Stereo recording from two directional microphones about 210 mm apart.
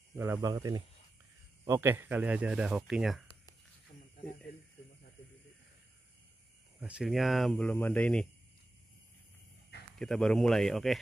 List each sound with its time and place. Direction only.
0.1 s speech: 15° right (ahead or behind)
6.8 s speech: 5° right (ahead or behind)
9.9 s speech: centre (ahead or behind)